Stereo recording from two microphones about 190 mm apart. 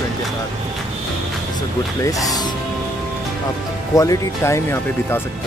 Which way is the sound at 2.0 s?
20° left (ahead or behind).